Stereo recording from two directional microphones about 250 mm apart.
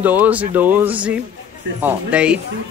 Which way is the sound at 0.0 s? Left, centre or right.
Centre.